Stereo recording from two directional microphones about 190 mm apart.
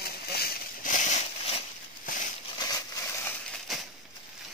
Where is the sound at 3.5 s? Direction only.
Centre (ahead or behind).